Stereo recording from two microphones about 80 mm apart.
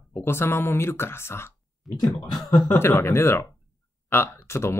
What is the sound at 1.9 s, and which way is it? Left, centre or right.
Speech, centre.